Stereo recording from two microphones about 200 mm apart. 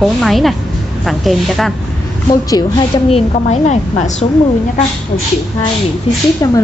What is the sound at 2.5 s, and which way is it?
A woman's voice, 20° left (ahead or behind).